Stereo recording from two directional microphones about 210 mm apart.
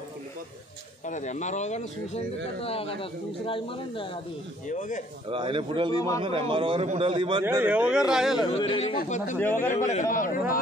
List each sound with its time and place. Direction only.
1.0 s speech: 35° left (ahead or behind)
4.6 s speech: 35° left (ahead or behind)
5.3 s speech: 25° right (ahead or behind)
5.9 s a man's voice: 15° left (ahead or behind)
6.5 s speech: 25° right (ahead or behind)
7.4 s speech: 10° right (ahead or behind)
8.5 s speech: 25° left (ahead or behind)
9.4 s a man's voice: 10° left (ahead or behind)
10.1 s speech: 40° left (ahead or behind)